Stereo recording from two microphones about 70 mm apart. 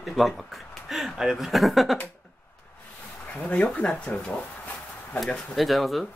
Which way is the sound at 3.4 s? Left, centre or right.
Centre.